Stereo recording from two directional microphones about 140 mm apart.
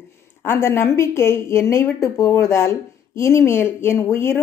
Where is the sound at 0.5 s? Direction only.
15° left (ahead or behind).